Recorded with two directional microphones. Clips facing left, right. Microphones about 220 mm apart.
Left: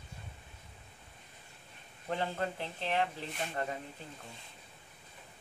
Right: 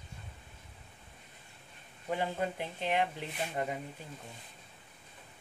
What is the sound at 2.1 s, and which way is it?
Speech, 10° right (ahead or behind).